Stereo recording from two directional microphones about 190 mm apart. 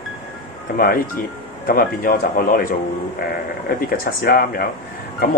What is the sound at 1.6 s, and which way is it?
Speech, 50° left (ahead or behind).